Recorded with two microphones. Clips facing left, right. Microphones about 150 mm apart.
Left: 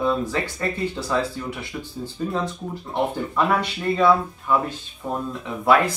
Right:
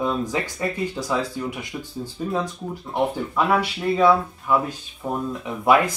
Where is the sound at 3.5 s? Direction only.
5° right (ahead or behind).